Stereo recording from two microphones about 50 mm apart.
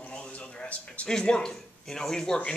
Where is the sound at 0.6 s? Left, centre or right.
Left.